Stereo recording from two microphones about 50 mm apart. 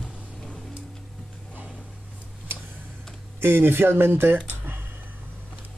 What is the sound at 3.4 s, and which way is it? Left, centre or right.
Speech, right.